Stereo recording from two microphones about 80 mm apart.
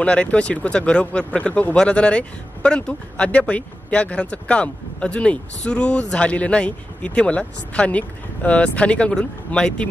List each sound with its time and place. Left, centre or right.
0.0 s speech: centre